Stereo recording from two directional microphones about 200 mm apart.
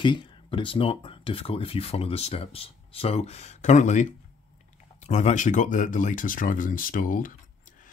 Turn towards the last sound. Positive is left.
turn(degrees=40)  # may be behind; listen again after turning